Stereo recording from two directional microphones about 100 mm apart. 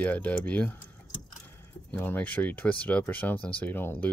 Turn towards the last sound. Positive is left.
turn(degrees=20)  # may be behind; listen again after turning